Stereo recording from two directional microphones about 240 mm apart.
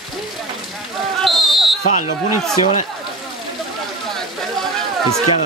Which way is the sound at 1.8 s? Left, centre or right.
Left.